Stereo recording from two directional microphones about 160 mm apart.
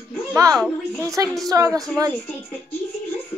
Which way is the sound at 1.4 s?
20° right (ahead or behind).